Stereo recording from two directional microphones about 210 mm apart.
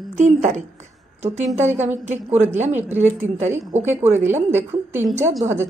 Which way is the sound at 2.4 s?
35° right (ahead or behind).